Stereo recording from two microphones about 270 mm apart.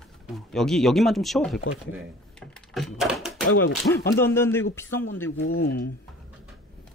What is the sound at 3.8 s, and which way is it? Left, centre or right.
Speech, centre.